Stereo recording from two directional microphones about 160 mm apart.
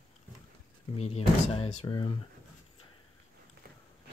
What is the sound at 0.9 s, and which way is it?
Speech, 40° left (ahead or behind).